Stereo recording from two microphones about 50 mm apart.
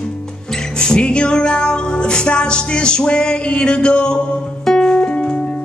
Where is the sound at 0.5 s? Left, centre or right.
Centre.